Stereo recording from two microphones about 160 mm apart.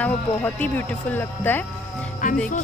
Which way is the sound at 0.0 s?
10° left (ahead or behind).